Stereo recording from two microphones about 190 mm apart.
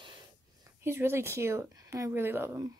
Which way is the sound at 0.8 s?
15° right (ahead or behind).